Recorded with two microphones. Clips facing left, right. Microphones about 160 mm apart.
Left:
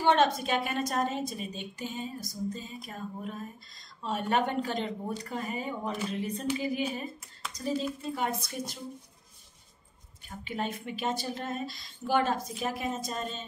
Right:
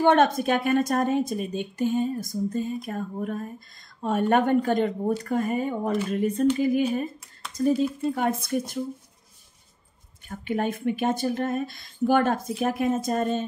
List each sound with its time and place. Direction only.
0.0 s a woman's voice: 50° right (ahead or behind)
10.2 s a woman's voice: 50° right (ahead or behind)